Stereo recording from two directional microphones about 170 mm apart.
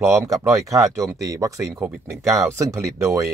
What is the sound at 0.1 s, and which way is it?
Speech, 15° right (ahead or behind).